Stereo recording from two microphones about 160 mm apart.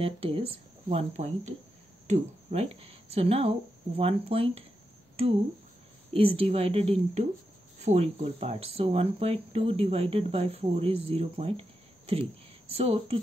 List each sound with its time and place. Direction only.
0.0 s speech: 35° right (ahead or behind)
6.1 s speech: 35° right (ahead or behind)